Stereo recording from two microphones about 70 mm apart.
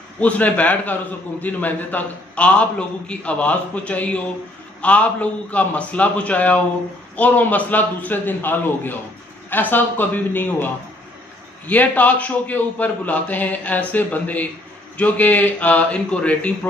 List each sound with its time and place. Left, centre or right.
0.2 s a man's voice: left